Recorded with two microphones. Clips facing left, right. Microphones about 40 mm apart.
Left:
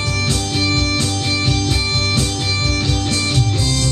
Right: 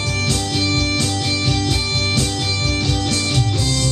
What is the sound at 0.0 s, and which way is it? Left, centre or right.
Music, left.